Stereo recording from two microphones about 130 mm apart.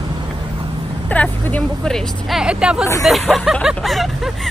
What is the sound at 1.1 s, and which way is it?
Speech, 10° left (ahead or behind).